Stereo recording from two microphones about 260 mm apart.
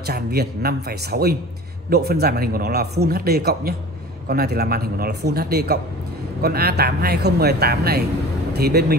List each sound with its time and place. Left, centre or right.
0.0 s speech: right